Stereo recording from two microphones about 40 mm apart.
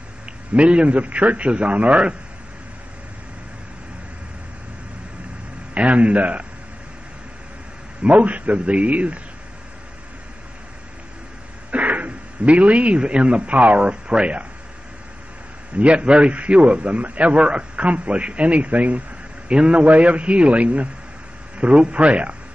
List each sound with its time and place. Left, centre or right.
0.6 s a man's voice: right
5.8 s a man's voice: right
8.0 s a man's voice: right
11.7 s a man's voice: right
15.7 s a man's voice: right